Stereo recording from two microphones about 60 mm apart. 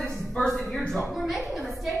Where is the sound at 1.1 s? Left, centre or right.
Centre.